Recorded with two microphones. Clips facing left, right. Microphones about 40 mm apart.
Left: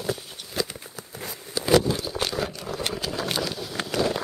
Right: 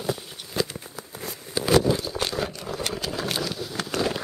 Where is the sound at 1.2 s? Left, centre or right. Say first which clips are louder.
Right 1 dB; centre.